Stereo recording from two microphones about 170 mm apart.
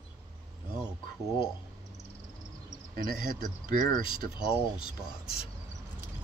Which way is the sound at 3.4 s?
55° right (ahead or behind).